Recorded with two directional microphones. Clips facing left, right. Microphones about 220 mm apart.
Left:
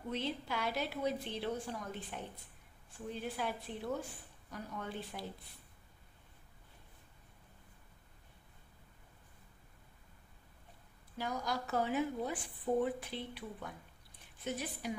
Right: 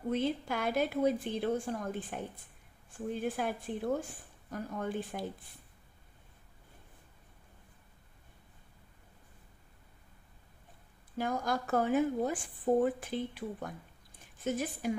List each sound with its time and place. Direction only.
0.1 s a woman's voice: 50° right (ahead or behind)
11.1 s a woman's voice: 50° right (ahead or behind)